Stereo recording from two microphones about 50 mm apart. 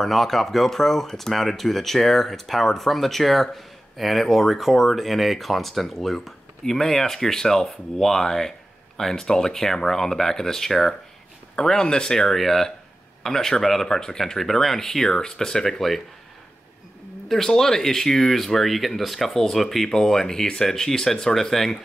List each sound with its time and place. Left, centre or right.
0.0 s speech: centre
17.3 s speech: centre